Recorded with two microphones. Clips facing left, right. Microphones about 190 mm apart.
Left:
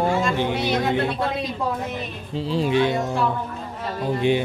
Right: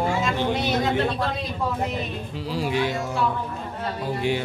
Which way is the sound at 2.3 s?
25° left (ahead or behind).